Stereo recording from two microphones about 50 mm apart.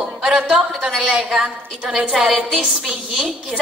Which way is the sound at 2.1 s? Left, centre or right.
Centre.